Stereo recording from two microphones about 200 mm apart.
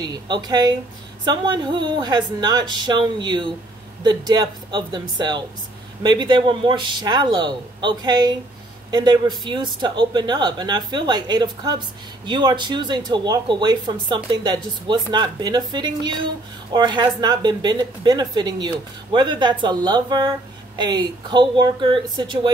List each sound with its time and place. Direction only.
0.0 s a woman's voice: 20° right (ahead or behind)